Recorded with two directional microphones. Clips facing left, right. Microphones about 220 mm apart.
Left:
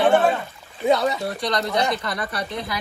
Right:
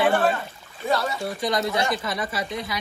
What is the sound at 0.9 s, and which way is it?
Speech, 20° left (ahead or behind).